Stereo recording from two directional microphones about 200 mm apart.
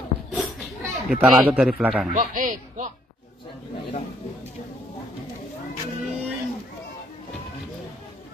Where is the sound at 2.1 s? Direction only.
40° right (ahead or behind).